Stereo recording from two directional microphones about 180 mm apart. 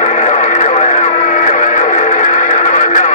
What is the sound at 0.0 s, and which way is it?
Radio, 40° left (ahead or behind).